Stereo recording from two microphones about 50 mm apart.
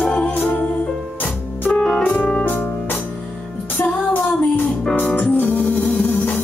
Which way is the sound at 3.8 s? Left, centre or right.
Left.